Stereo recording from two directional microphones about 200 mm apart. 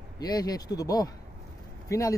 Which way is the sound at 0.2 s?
20° left (ahead or behind).